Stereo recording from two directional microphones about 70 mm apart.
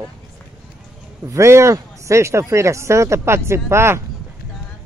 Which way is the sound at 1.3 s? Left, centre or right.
Right.